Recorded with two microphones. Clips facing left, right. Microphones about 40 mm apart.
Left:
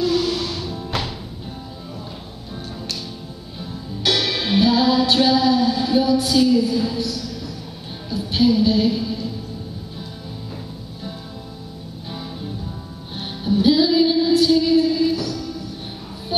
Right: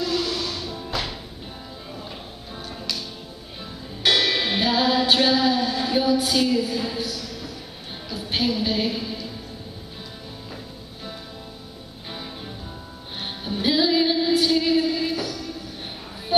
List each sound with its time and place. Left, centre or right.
0.0 s music: centre
4.0 s music: centre
6.3 s a woman's voice: centre
8.2 s a sound: centre
13.2 s music: centre